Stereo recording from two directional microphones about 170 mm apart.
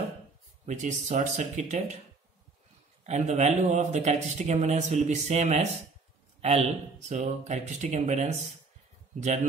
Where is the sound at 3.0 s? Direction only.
40° right (ahead or behind).